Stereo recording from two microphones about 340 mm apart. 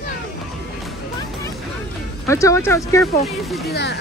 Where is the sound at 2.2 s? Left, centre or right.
Centre.